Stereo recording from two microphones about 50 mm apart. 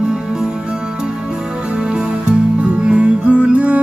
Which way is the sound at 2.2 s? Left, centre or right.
Centre.